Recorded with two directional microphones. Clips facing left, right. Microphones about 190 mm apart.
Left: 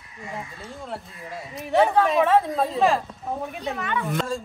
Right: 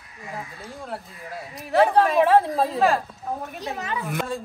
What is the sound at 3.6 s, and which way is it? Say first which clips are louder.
Speech: left 1 dB; 35° right (ahead or behind).